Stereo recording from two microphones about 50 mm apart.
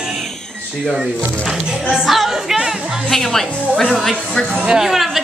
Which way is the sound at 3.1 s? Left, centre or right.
Centre.